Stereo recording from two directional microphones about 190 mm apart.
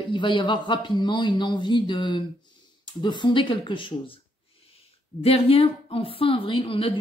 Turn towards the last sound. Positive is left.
turn(degrees=30)  # may be behind; listen again after turning